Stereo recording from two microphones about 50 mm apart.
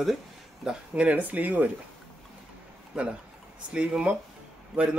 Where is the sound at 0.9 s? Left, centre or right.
Right.